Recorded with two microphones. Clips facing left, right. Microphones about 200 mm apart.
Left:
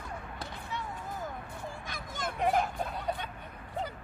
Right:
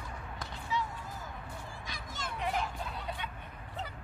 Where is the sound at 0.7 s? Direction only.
55° left (ahead or behind).